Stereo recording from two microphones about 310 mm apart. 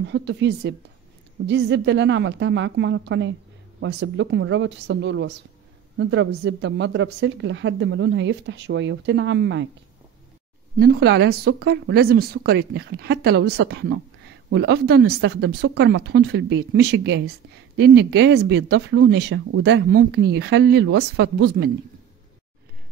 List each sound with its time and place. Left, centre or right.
0.0 s speech: right
10.8 s speech: right